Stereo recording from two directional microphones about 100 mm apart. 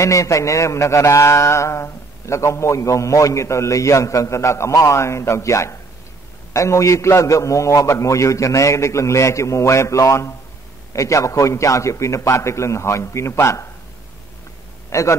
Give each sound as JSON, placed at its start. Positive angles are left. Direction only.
{"t": 0.0, "sound": "mantra", "side_deg": 30}
{"t": 14.9, "sound": "a man's voice", "side_deg": 30}